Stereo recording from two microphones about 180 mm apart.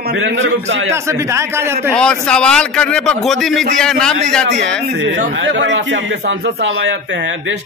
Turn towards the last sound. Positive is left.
turn(degrees=-90)